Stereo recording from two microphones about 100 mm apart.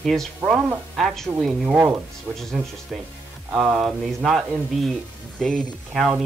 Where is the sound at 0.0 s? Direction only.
5° left (ahead or behind).